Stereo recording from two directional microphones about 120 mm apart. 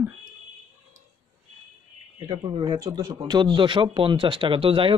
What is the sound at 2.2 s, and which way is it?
Speech, 35° right (ahead or behind).